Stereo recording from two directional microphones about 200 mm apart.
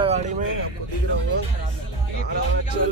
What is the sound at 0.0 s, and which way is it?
Vehicle, 35° right (ahead or behind).